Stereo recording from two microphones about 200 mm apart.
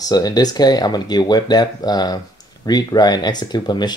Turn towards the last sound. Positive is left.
turn(degrees=20)  # may be behind; listen again after turning